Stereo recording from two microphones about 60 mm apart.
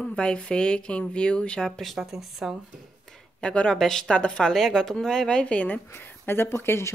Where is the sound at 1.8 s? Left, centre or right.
Centre.